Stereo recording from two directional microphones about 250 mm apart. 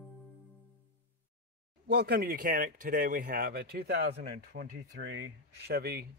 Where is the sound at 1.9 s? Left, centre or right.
Right.